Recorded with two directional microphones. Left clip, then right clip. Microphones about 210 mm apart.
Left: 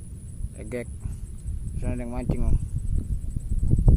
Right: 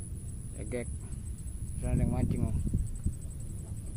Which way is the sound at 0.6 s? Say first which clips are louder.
Left 5 dB; 50° left (ahead or behind).